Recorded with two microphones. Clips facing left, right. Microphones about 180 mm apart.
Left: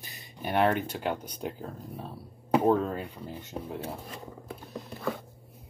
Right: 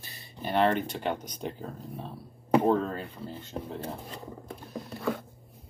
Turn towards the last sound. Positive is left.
turn(degrees=0)  # may be behind; listen again after turning